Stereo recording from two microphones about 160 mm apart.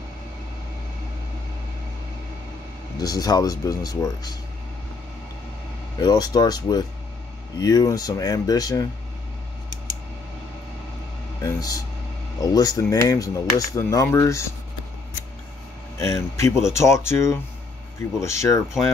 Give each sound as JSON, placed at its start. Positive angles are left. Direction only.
{"t": 3.0, "sound": "speech", "side_deg": 25}
{"t": 5.9, "sound": "speech", "side_deg": 25}
{"t": 11.4, "sound": "speech", "side_deg": 20}
{"t": 16.0, "sound": "speech", "side_deg": 20}